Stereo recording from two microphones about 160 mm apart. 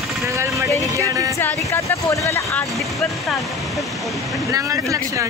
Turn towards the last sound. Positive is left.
turn(degrees=-20)  # may be behind; listen again after turning